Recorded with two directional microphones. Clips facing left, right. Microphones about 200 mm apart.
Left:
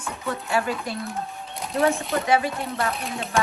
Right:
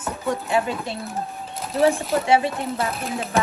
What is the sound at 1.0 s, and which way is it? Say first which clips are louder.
Music: right 1 dB; centre (ahead or behind).